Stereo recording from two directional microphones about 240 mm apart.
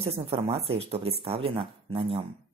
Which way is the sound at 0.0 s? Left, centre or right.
Right.